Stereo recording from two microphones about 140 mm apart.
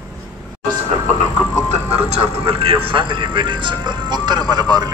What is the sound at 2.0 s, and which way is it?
Speech, 40° right (ahead or behind).